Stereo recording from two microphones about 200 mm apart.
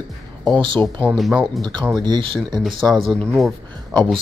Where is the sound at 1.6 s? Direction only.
20° right (ahead or behind).